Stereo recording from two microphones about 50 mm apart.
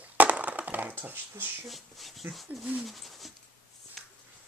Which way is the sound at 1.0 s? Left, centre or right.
Right.